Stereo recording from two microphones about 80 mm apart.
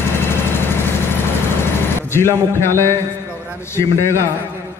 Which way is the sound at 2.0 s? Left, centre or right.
Left.